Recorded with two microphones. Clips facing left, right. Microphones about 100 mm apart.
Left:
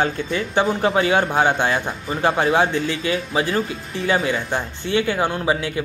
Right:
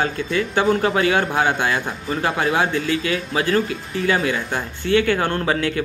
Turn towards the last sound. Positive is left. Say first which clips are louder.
# even
turn(degrees=15)  # may be behind; listen again after turning